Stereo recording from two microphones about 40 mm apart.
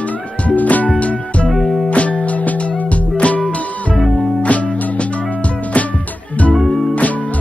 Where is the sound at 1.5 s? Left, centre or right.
Centre.